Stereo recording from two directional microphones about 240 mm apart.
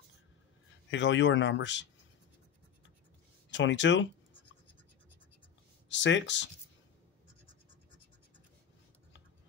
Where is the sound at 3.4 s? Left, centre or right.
Left.